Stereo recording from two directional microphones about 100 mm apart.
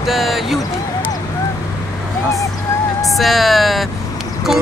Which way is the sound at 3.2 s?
Centre (ahead or behind).